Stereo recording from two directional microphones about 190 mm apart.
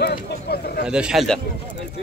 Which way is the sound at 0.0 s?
55° left (ahead or behind).